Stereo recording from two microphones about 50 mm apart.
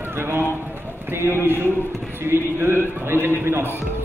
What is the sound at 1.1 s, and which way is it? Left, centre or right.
A man's voice, right.